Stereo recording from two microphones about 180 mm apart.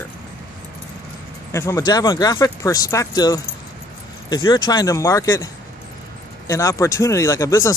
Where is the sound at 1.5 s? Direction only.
15° left (ahead or behind).